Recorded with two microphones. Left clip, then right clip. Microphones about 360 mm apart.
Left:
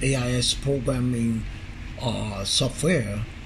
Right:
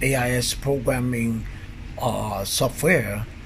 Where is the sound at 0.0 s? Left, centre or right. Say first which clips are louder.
Right 3 dB; centre.